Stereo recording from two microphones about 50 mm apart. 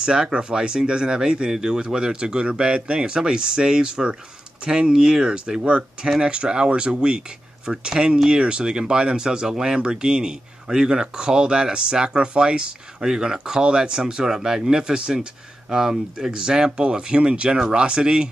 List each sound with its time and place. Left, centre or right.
0.0 s speech: centre